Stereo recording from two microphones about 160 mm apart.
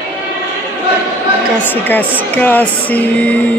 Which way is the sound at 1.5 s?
10° left (ahead or behind).